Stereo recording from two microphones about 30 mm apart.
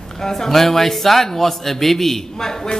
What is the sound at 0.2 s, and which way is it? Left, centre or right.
Speech, centre.